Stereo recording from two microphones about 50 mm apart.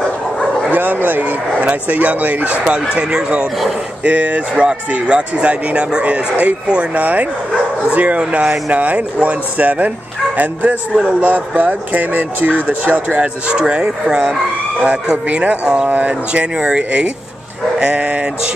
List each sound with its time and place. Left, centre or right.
1.0 s speech: right
2.9 s speech: centre
4.0 s speech: right
15.2 s speech: right
15.9 s speech: right
16.5 s speech: centre